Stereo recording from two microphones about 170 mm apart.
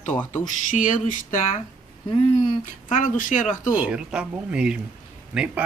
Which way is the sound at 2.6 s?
50° left (ahead or behind).